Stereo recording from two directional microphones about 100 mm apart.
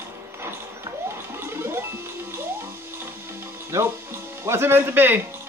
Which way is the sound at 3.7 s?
25° right (ahead or behind).